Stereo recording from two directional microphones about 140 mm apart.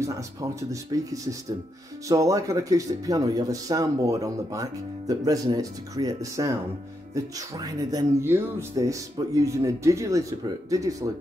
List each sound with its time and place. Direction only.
0.0 s speech: 25° right (ahead or behind)